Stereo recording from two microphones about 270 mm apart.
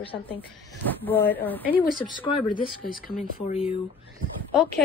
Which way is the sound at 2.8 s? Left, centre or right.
Left.